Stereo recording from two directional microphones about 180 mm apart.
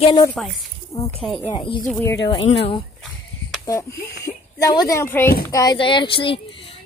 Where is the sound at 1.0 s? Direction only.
5° left (ahead or behind).